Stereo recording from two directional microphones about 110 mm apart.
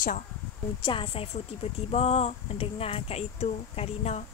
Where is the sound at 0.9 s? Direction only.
60° left (ahead or behind).